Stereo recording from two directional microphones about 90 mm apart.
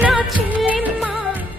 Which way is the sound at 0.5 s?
15° right (ahead or behind).